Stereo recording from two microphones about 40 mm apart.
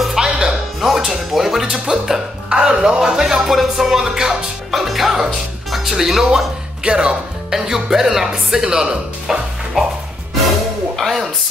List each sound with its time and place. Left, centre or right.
0.2 s music: centre
0.7 s music: centre
1.0 s speech: centre
3.0 s speech: centre
4.6 s speech: centre
6.8 s speech: right
7.5 s speech: centre
11.0 s speech: centre